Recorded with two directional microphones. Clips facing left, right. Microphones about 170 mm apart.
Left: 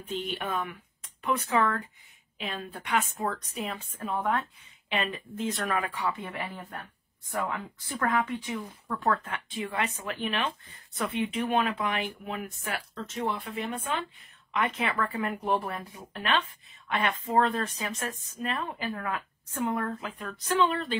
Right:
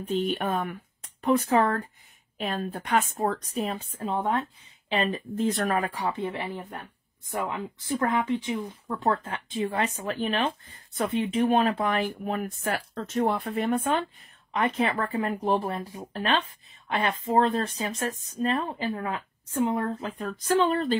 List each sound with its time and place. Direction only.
0.0 s speech: 45° right (ahead or behind)
14.5 s speech: 35° right (ahead or behind)